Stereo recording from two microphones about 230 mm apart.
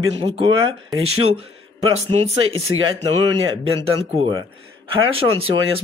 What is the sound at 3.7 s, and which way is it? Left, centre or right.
Speech, right.